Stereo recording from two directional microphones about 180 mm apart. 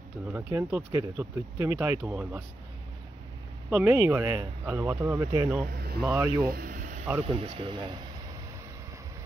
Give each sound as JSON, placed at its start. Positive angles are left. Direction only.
{"t": 0.3, "sound": "speech", "side_deg": -10}
{"t": 3.7, "sound": "speech", "side_deg": -10}
{"t": 5.7, "sound": "speech", "side_deg": -60}
{"t": 6.0, "sound": "speech", "side_deg": -20}
{"t": 6.4, "sound": "a sound", "side_deg": -50}
{"t": 7.2, "sound": "speech", "side_deg": -30}